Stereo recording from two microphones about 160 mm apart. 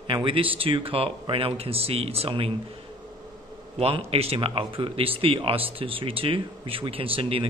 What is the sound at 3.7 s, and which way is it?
Speech, 40° right (ahead or behind).